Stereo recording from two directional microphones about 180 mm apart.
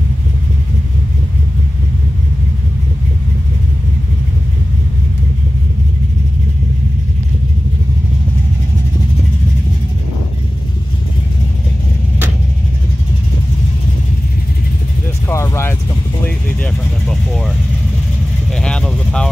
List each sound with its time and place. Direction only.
15.2 s music: 15° left (ahead or behind)
16.3 s vehicle: 5° left (ahead or behind)